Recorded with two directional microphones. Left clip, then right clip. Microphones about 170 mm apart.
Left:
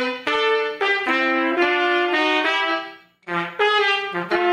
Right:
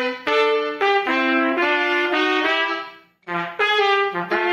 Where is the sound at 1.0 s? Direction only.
20° left (ahead or behind).